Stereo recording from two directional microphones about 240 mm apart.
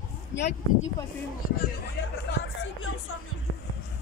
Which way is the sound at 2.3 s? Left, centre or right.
Left.